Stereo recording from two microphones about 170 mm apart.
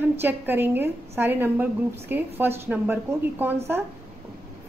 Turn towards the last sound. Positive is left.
turn(degrees=-10)  # may be behind; listen again after turning